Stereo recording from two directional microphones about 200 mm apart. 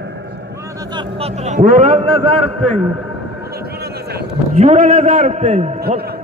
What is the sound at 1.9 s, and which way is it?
Speech, 30° right (ahead or behind).